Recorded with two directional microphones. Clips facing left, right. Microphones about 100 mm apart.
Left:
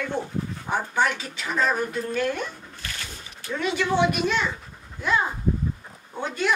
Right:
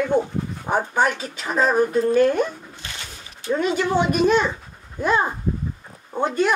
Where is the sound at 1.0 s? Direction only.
45° right (ahead or behind).